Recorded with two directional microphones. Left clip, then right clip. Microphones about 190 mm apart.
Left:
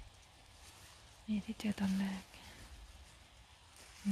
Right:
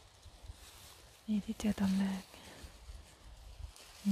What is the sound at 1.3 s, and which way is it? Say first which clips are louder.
Speech: right 3 dB; 20° right (ahead or behind).